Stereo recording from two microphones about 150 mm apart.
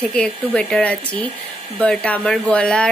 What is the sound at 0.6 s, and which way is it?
Speech, 5° left (ahead or behind).